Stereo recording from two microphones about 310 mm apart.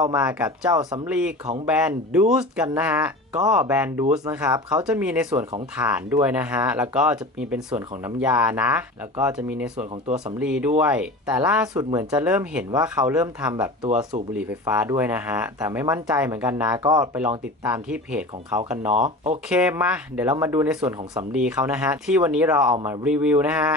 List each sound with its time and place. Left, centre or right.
0.0 s speech: centre
18.9 s speech: centre
19.5 s speech: centre